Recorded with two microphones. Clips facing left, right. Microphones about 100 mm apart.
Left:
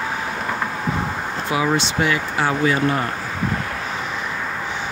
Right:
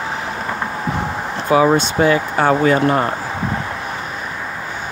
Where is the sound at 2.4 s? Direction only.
45° right (ahead or behind).